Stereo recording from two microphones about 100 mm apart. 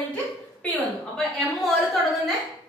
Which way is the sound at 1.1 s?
Centre (ahead or behind).